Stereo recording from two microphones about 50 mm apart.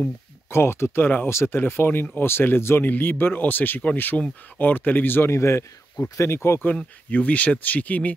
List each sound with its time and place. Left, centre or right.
0.5 s speech: left
1.3 s speech: left
1.6 s speech: left
5.3 s speech: left
7.1 s speech: left